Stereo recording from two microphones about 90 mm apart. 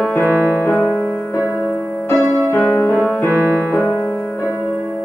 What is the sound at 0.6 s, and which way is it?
Music, 25° left (ahead or behind).